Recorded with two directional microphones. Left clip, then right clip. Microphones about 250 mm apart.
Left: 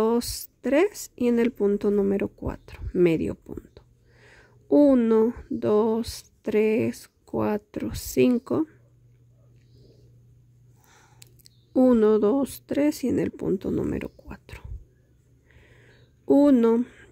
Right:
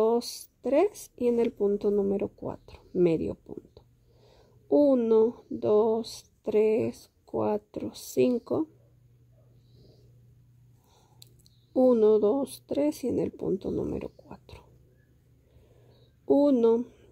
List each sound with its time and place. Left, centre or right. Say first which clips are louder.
0.0 s speech: left 1 dB; centre
11.2 s a sound: right 1 dB; centre
11.7 s speech: left 2 dB; centre
16.3 s speech: left 3 dB; centre